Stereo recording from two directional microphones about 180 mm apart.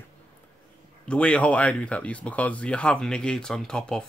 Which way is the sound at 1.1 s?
5° left (ahead or behind).